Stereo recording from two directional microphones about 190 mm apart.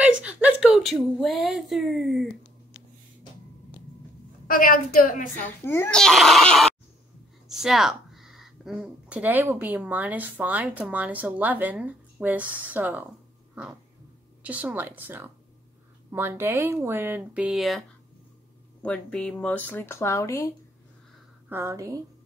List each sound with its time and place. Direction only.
0.0 s a woman's voice: 5° right (ahead or behind)
4.5 s a woman's voice: 50° left (ahead or behind)
5.7 s speech: 10° left (ahead or behind); by 13.0 s 10° right (ahead or behind)
14.4 s speech: 5° right (ahead or behind); by 20.5 s 15° left (ahead or behind)
21.5 s speech: 15° right (ahead or behind)